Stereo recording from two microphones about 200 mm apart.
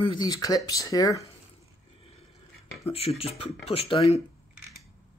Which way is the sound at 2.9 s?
30° left (ahead or behind).